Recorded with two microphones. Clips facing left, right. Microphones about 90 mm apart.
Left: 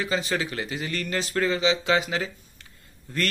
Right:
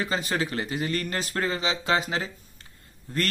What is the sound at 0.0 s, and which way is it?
A man's voice, 40° right (ahead or behind).